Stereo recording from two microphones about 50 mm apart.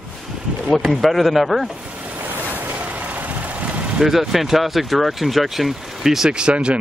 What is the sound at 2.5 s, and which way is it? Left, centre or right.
Vehicle, right.